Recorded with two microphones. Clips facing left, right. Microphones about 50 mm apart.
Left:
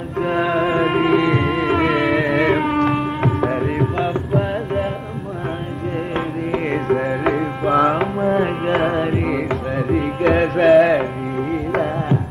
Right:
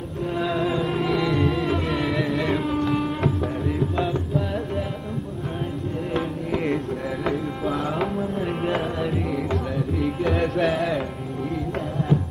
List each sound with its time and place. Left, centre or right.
0.2 s music: left
3.3 s music: left
6.7 s music: left
8.2 s carnatic music: left
8.7 s music: left